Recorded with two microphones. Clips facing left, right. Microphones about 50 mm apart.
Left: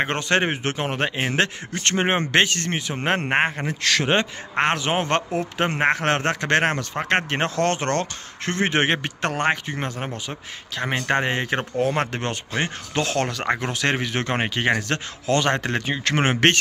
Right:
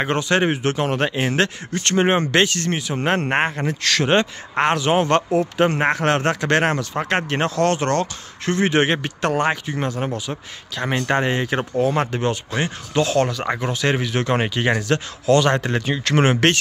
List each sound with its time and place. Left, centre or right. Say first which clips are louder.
0.0 s speech: right 2 dB; left
2.9 s a man's voice: right 2 dB; centre
4.6 s speech: right 4 dB; left
10.8 s speech: right 2 dB; left
13.9 s speech: right 3 dB; left